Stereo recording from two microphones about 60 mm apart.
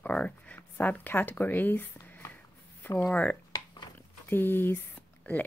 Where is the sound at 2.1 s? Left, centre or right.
Left.